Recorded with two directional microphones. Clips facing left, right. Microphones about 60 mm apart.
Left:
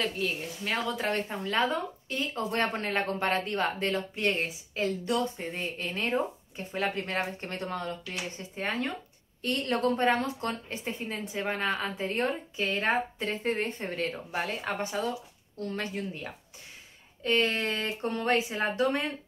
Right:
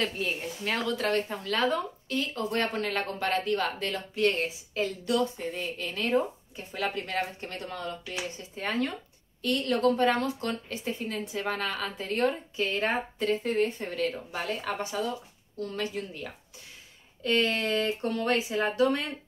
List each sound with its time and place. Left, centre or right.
0.0 s a woman's voice: centre
0.8 s a woman's voice: left
17.2 s a woman's voice: left